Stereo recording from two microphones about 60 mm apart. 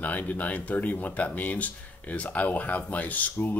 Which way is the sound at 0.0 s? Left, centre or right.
Left.